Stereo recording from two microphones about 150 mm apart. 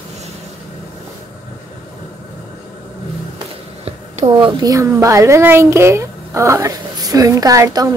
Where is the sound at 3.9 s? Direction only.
45° right (ahead or behind).